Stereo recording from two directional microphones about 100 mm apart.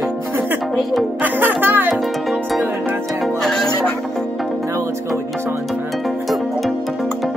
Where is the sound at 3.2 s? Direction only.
5° left (ahead or behind).